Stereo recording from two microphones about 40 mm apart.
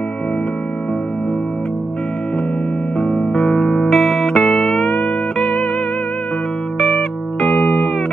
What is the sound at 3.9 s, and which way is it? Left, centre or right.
Music, centre.